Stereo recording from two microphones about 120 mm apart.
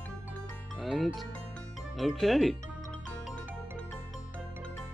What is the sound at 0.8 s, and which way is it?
Speech, centre (ahead or behind).